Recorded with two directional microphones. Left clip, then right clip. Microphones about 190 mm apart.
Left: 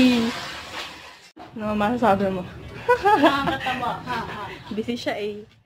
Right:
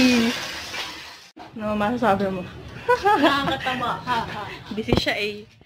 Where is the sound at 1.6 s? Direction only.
15° left (ahead or behind).